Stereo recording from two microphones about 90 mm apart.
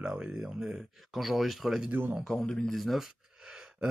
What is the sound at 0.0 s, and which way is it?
Speech, 10° right (ahead or behind).